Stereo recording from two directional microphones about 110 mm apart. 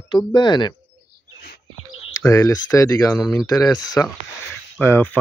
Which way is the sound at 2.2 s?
30° left (ahead or behind).